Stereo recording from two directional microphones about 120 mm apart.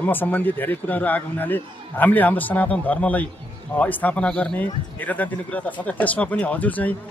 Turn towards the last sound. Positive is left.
turn(degrees=15)  # may be behind; listen again after turning